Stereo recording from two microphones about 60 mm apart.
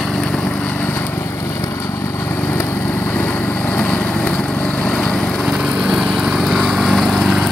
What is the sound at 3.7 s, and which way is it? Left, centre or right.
Vehicle, left.